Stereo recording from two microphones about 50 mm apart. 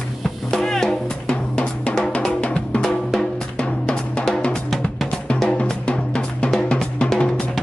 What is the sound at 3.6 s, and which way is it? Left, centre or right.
Drum, left.